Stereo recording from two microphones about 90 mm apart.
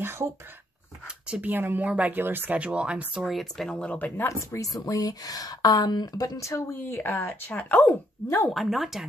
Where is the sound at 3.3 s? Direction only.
5° left (ahead or behind).